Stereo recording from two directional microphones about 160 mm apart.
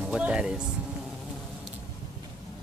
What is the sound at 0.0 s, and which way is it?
Speech, 5° right (ahead or behind).